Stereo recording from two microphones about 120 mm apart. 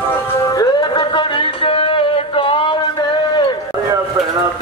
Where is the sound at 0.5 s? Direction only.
35° left (ahead or behind).